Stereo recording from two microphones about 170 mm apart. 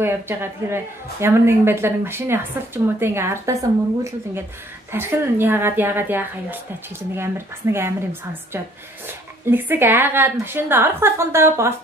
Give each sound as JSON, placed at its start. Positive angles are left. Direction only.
{"t": 0.0, "sound": "a woman's voice", "side_deg": -15}
{"t": 4.9, "sound": "a woman's voice", "side_deg": -10}